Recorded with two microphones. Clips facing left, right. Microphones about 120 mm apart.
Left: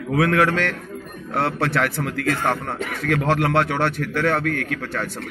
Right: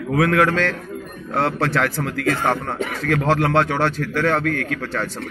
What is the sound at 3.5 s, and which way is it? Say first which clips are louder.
A man's voice: right 2 dB; 15° left (ahead or behind).